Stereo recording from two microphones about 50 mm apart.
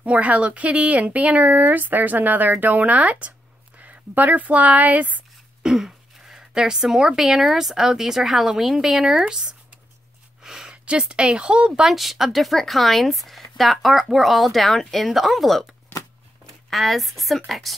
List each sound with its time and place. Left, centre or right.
0.0 s speech: right
5.6 s speech: centre
10.4 s a woman's voice: centre
11.9 s speech: centre
16.7 s speech: centre